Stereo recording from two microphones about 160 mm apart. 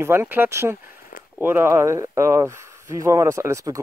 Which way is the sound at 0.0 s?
15° right (ahead or behind).